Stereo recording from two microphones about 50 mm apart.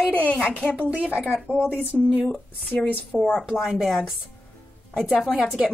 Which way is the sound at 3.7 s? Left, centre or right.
Centre.